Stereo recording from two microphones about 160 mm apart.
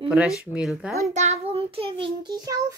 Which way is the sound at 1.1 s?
45° right (ahead or behind).